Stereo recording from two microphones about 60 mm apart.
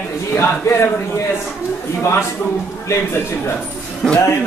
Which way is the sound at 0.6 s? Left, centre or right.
Left.